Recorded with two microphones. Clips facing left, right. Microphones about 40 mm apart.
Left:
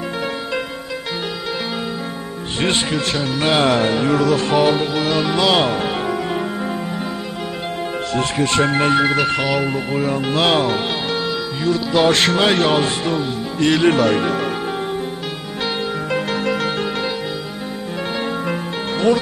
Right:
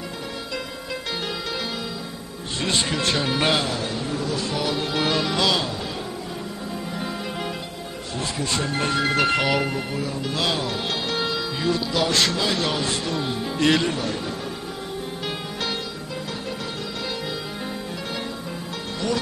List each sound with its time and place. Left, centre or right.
3.1 s speech: centre
3.6 s music: left
4.4 s speech: left
4.9 s speech: centre
5.2 s speech: centre
8.2 s speech: left
8.7 s speech: left
9.1 s speech: centre
9.9 s speech: left
11.1 s music: centre
11.9 s speech: left
12.6 s speech: left
13.2 s speech: centre
13.8 s speech: left